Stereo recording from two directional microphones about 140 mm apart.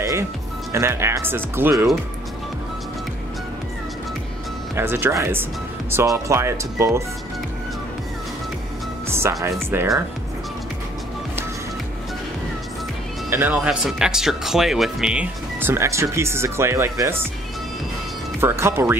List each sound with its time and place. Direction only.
0.7 s speech: 20° right (ahead or behind)
4.7 s speech: 15° right (ahead or behind)
9.1 s speech: 20° right (ahead or behind)
13.3 s speech: 10° right (ahead or behind)
15.6 s speech: 20° right (ahead or behind)
18.4 s speech: 15° right (ahead or behind)